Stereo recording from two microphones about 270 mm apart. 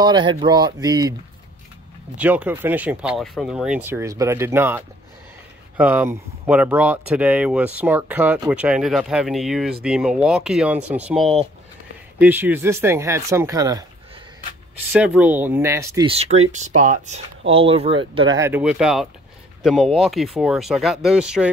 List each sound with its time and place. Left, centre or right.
0.0 s speech: centre
2.1 s speech: centre
14.9 s speech: centre